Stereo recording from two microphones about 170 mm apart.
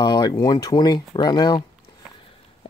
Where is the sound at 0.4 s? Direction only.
20° left (ahead or behind).